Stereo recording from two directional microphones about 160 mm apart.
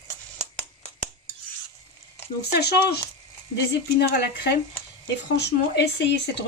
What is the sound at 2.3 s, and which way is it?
Speech, 90° left.